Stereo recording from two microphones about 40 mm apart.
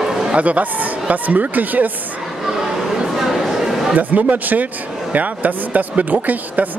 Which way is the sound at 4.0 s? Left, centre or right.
Right.